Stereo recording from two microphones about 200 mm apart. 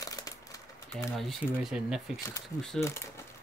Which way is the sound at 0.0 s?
15° left (ahead or behind).